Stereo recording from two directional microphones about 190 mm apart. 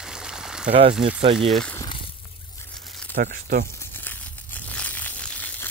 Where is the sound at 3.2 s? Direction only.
55° right (ahead or behind).